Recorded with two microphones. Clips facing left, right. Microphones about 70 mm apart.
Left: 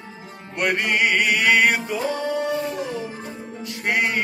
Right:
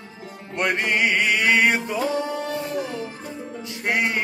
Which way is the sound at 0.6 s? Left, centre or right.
Right.